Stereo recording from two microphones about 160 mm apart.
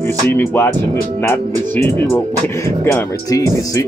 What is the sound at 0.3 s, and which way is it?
Speech, 15° left (ahead or behind).